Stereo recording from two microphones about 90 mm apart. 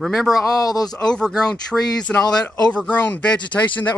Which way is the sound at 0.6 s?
45° left (ahead or behind).